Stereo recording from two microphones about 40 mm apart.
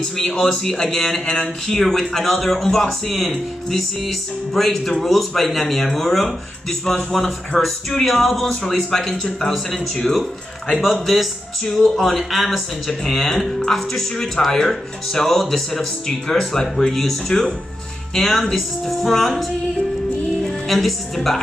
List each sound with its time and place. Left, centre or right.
0.3 s speech: centre
1.2 s a sound: left
1.7 s speech: centre
10.8 s speech: centre
11.6 s speech: centre
12.0 s speech: centre
20.4 s a woman's voice: centre